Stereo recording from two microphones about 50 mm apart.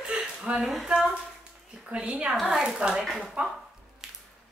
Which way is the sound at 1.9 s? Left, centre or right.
Right.